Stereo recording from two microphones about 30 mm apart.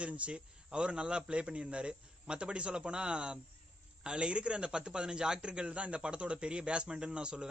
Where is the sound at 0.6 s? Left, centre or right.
Right.